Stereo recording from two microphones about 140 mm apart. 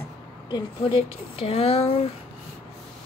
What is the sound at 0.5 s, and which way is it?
Speech, 40° left (ahead or behind).